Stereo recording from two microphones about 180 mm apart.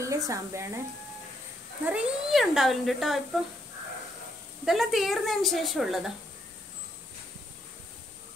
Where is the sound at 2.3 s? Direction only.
Centre (ahead or behind).